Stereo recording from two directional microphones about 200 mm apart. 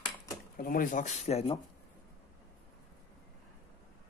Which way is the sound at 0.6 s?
45° left (ahead or behind).